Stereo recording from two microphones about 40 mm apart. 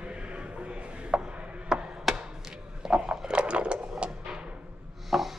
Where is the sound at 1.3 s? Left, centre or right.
Right.